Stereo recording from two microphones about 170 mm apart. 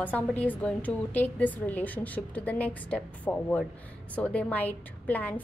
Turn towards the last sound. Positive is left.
turn(degrees=10)  # may be behind; listen again after turning